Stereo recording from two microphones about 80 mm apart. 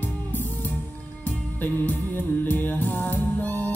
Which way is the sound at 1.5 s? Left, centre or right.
Left.